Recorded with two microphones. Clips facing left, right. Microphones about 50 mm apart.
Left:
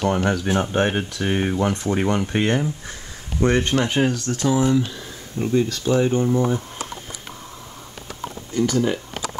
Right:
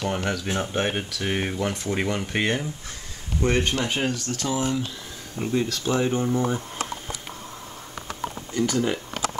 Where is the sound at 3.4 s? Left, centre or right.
Left.